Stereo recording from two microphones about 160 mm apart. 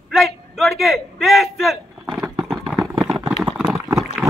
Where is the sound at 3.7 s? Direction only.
20° right (ahead or behind).